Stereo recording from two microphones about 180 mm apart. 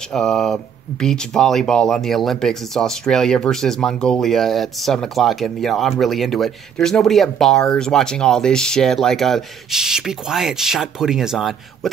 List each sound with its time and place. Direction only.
0.1 s speech: 5° left (ahead or behind)